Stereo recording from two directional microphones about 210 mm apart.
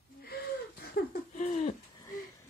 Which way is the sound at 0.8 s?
45° left (ahead or behind).